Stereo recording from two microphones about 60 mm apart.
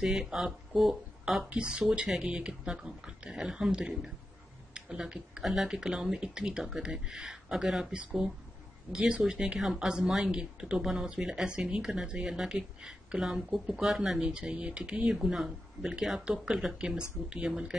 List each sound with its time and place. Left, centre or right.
0.0 s speech: centre
1.5 s speech: centre
8.9 s speech: centre
14.3 s speech: centre